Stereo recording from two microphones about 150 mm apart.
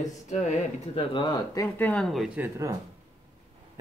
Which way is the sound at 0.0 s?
50° left (ahead or behind).